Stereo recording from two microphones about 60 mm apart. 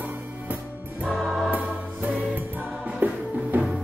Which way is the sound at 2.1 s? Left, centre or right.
Right.